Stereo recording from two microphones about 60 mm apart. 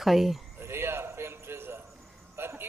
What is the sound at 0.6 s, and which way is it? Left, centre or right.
Music, right.